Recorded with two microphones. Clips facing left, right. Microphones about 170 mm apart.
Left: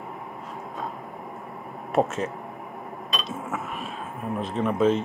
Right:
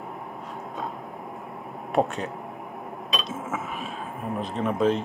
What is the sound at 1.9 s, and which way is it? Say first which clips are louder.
Speech: left 1 dB; centre (ahead or behind).